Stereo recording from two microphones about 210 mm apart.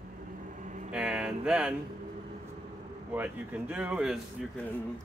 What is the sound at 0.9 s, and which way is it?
Speech, 5° right (ahead or behind).